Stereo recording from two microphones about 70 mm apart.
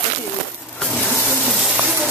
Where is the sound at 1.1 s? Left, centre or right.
Left.